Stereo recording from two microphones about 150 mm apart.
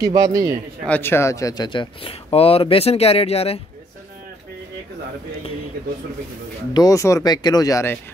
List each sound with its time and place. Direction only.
0.0 s a man's voice: 25° right (ahead or behind)
0.8 s speech: 10° left (ahead or behind); by 3.6 s 40° left (ahead or behind)
6.7 s speech: 25° left (ahead or behind)